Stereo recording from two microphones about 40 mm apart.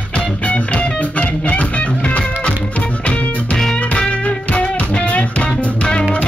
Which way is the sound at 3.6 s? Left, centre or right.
Centre.